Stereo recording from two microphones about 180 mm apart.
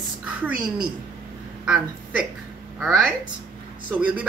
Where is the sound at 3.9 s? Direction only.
10° right (ahead or behind).